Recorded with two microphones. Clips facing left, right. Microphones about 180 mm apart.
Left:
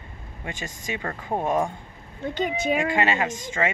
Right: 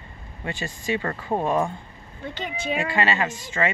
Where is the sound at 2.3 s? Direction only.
45° left (ahead or behind).